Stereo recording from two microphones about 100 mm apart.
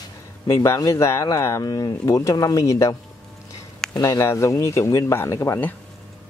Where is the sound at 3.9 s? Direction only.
45° left (ahead or behind).